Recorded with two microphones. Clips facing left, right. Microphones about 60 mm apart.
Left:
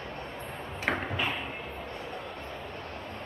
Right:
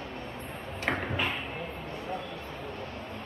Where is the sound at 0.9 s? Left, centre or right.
Centre.